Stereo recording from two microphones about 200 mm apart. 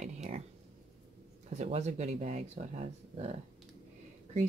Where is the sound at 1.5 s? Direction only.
35° right (ahead or behind).